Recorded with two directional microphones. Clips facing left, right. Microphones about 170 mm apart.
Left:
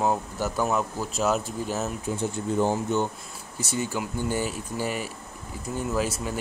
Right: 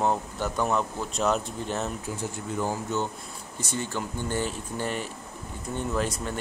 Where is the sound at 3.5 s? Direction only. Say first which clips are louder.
Left 3 dB; 10° left (ahead or behind).